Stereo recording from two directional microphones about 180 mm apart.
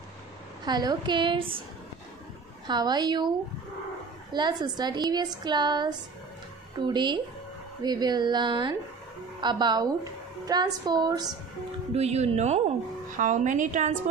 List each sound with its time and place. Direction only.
0.7 s a woman's voice: 25° right (ahead or behind)
2.6 s a woman's voice: 25° right (ahead or behind)
4.3 s a woman's voice: 25° right (ahead or behind)
11.9 s a woman's voice: 35° right (ahead or behind)